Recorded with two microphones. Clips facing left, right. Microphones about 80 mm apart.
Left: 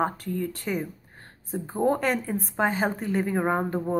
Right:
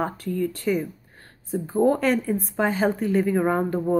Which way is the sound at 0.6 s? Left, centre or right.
Left.